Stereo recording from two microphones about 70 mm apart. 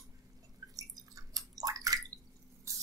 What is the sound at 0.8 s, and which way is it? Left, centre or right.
Drip, right.